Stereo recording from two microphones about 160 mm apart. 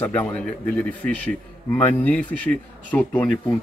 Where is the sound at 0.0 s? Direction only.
10° left (ahead or behind).